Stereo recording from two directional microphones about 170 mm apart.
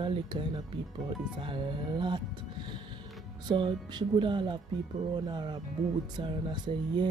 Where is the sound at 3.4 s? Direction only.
30° right (ahead or behind).